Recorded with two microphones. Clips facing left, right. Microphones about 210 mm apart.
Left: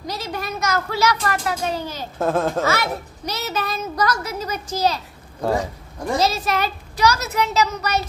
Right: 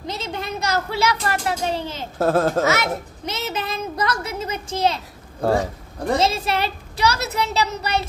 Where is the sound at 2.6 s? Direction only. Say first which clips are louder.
Right 1 dB; 20° right (ahead or behind).